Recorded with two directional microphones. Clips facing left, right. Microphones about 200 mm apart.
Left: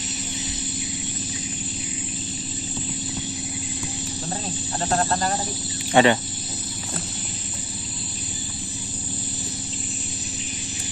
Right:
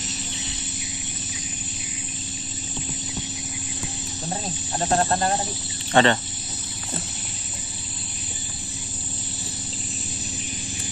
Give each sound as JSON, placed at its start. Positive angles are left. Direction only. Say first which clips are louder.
{"t": 4.7, "sound": "speech", "louder": "right 2 dB", "side_deg": -25}
{"t": 5.9, "sound": "speech", "louder": "left 2 dB", "side_deg": 10}